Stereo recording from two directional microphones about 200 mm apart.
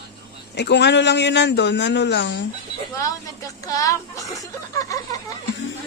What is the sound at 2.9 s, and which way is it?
A woman's voice, 15° left (ahead or behind).